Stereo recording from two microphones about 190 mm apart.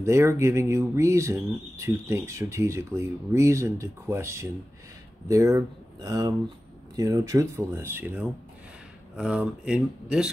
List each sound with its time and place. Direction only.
0.0 s speech: 15° right (ahead or behind)